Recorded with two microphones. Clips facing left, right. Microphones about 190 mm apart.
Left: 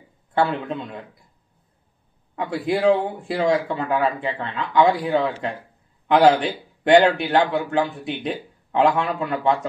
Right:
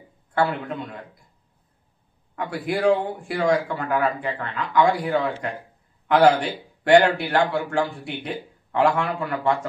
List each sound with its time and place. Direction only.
0.3 s a man's voice: 20° left (ahead or behind)
2.3 s a man's voice: 25° left (ahead or behind)